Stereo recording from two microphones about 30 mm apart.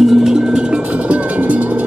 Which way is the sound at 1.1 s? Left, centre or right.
Right.